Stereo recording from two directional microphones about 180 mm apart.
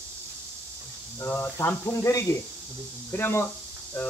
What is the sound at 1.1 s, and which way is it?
Speech, 10° left (ahead or behind).